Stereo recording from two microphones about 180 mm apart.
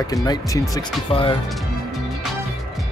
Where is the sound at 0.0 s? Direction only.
20° left (ahead or behind).